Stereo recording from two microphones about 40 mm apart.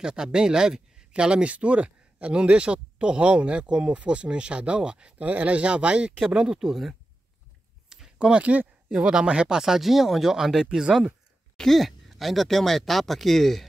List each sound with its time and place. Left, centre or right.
0.0 s speech: centre
1.2 s speech: right
5.2 s speech: right; by 7.0 s centre
7.9 s a sound: centre
8.4 s speech: right
9.6 s speech: centre
11.5 s a sound: centre
11.8 s speech: centre